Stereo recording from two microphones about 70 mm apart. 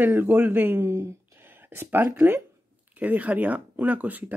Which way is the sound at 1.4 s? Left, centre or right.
Right.